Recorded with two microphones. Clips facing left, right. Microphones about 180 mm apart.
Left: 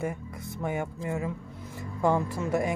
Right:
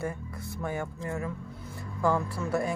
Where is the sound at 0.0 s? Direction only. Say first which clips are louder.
Left 2 dB; 20° left (ahead or behind).